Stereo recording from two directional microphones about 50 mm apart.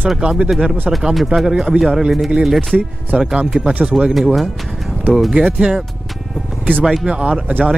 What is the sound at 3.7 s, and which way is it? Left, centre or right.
Speech, right.